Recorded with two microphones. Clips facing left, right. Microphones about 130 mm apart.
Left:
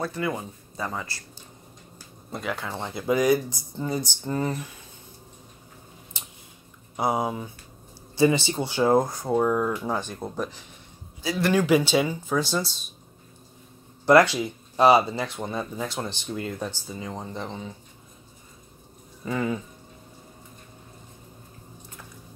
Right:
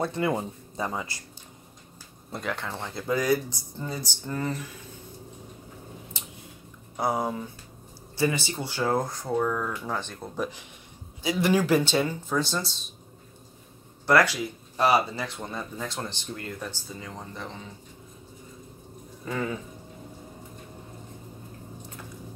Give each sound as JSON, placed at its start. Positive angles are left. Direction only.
{"t": 0.0, "sound": "speech", "side_deg": -25}
{"t": 0.8, "sound": "speech", "side_deg": -15}
{"t": 2.3, "sound": "speech", "side_deg": 5}
{"t": 7.0, "sound": "speech", "side_deg": 15}
{"t": 11.3, "sound": "speech", "side_deg": -5}
{"t": 14.0, "sound": "speech", "side_deg": 25}
{"t": 19.2, "sound": "speech", "side_deg": 5}